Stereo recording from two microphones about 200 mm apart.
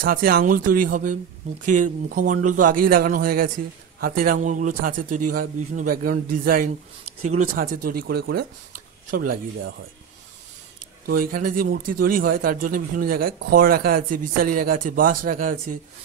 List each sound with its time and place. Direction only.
0.0 s a man's voice: 45° right (ahead or behind)
11.1 s a man's voice: 45° right (ahead or behind)